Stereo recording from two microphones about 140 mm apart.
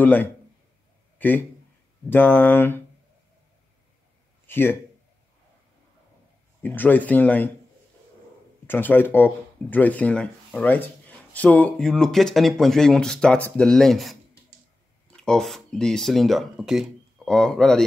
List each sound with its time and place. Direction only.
0.0 s speech: 15° left (ahead or behind)
1.1 s a sound: 15° left (ahead or behind)
2.0 s speech: 15° left (ahead or behind)
4.5 s a man's voice: 15° left (ahead or behind)
6.6 s speech: 15° left (ahead or behind)
8.6 s speech: 15° left (ahead or behind)
15.1 s speech: 5° left (ahead or behind)